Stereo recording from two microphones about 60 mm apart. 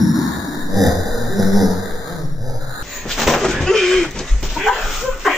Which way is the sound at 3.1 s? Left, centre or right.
Centre.